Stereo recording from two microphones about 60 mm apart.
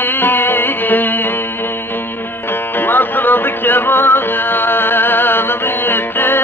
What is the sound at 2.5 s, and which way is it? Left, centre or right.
Music, left.